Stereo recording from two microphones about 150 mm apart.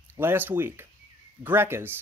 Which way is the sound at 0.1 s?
15° right (ahead or behind).